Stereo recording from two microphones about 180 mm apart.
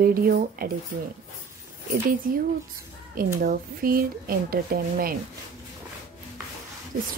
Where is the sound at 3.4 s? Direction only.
55° right (ahead or behind).